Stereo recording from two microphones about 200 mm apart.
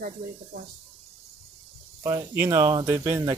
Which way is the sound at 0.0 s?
45° right (ahead or behind).